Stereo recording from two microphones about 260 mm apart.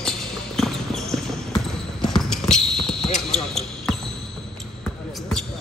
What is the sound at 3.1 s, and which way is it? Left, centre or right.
Basketball bounce, centre.